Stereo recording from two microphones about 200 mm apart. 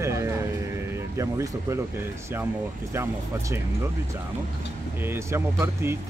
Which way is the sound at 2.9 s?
15° right (ahead or behind).